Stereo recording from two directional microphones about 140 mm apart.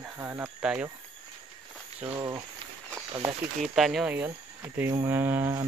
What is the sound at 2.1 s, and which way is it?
Speech, 20° right (ahead or behind).